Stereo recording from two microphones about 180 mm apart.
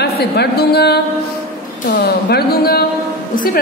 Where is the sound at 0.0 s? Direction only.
65° left (ahead or behind).